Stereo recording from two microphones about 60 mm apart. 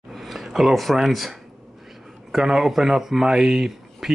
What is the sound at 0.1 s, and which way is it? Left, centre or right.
Speech, centre.